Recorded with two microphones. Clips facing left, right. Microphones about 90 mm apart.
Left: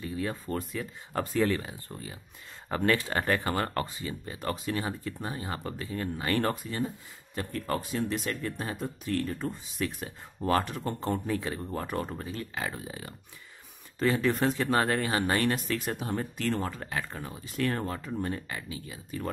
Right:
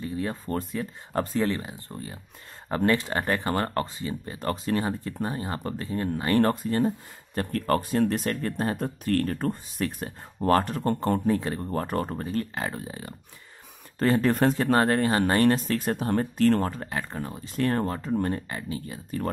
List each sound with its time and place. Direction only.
0.0 s a sound: 25° right (ahead or behind)
0.5 s speech: 35° right (ahead or behind)
2.7 s speech: 35° right (ahead or behind)
7.3 s speech: 55° right (ahead or behind)
11.1 s speech: 35° right (ahead or behind)
16.8 s speech: 30° right (ahead or behind)